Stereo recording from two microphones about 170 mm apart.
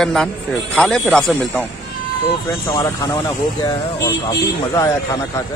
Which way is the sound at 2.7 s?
20° left (ahead or behind).